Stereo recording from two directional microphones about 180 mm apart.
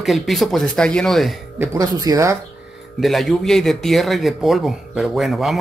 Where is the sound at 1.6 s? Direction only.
20° right (ahead or behind).